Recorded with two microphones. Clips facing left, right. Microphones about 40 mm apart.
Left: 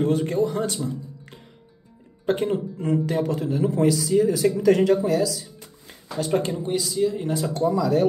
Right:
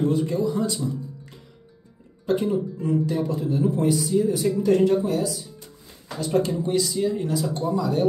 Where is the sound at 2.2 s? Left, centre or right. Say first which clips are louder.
Even; left.